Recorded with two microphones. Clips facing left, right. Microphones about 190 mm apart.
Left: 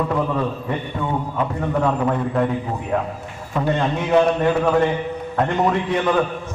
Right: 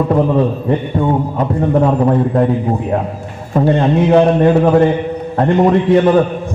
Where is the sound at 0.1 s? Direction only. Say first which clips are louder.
Right 8 dB; 35° right (ahead or behind).